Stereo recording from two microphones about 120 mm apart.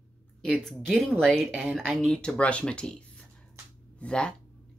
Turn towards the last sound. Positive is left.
turn(degrees=10)  # may be behind; listen again after turning